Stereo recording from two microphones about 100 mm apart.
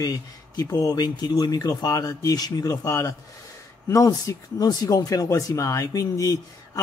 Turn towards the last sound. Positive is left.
turn(degrees=35)  # may be behind; listen again after turning